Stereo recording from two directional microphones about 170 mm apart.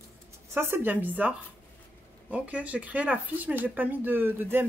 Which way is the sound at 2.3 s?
5° right (ahead or behind).